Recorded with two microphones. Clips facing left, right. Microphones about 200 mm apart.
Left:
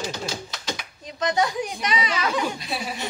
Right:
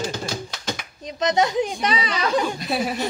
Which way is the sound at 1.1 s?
20° right (ahead or behind).